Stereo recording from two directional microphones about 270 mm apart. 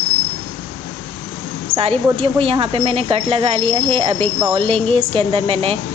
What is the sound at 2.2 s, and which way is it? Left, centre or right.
Speech, right.